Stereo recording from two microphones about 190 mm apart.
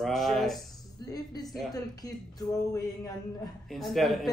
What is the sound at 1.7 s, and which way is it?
Speech, 20° left (ahead or behind).